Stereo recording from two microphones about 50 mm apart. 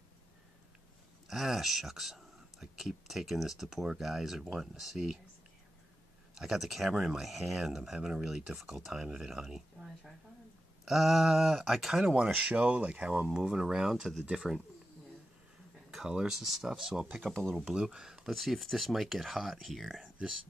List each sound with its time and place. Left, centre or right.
1.2 s speech: centre
6.3 s speech: centre
12.2 s speech: right
13.1 s speech: centre
16.1 s speech: centre
17.2 s speech: centre
17.6 s speech: centre
18.3 s speech: centre